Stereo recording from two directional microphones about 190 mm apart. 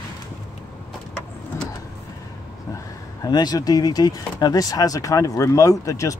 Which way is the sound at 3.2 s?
20° left (ahead or behind).